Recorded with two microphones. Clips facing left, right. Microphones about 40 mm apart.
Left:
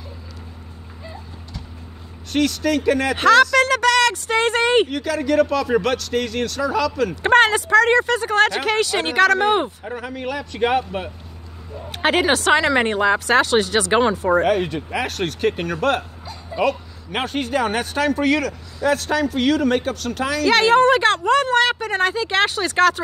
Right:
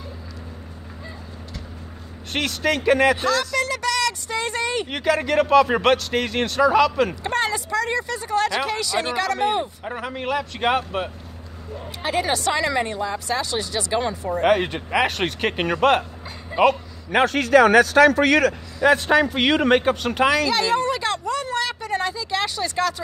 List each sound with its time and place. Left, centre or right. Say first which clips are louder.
2.3 s speech: left 3 dB; centre
3.2 s a sound: left 8 dB; left
4.8 s speech: right 1 dB; right
7.2 s speech: left 9 dB; left
9.8 s speech: right 1 dB; centre
12.0 s speech: left 5 dB; left
14.4 s a man's voice: even; right
14.7 s speech: right 3 dB; right
15.5 s speech: right 2 dB; right
16.6 s speech: right 3 dB; centre
17.1 s a man's voice: right 6 dB; right
18.8 s a man's voice: right 3 dB; right
20.4 s speech: left 7 dB; left